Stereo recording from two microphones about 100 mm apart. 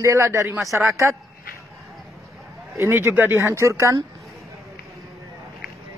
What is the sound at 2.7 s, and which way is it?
Speech, 25° right (ahead or behind).